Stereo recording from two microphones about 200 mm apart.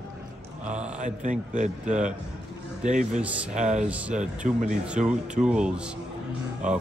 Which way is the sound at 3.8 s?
5° right (ahead or behind).